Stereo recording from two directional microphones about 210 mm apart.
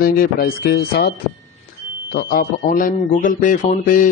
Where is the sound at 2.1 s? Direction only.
45° left (ahead or behind).